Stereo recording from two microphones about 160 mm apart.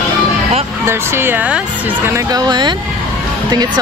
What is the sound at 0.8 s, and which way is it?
Speech, 15° right (ahead or behind).